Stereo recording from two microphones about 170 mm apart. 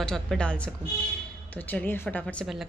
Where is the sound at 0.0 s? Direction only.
5° left (ahead or behind).